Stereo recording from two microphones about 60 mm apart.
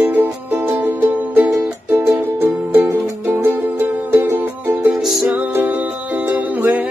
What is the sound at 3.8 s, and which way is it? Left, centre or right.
Music, right.